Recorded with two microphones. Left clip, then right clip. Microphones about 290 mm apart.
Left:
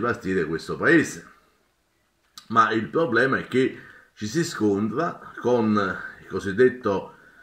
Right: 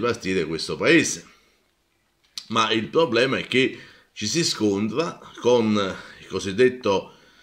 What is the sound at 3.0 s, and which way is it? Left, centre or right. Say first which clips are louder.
Speech: even; right.